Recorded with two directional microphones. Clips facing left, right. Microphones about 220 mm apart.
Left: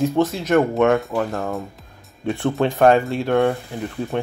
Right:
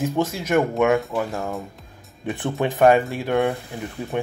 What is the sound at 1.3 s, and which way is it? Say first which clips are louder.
Speech: left 3 dB; centre (ahead or behind).